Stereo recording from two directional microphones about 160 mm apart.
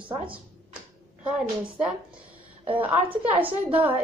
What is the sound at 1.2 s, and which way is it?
A woman's voice, 5° right (ahead or behind).